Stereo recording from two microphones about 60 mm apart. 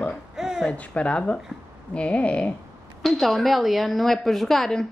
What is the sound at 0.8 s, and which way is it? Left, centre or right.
Speech, left.